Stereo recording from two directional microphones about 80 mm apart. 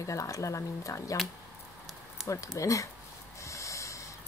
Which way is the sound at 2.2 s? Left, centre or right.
Left.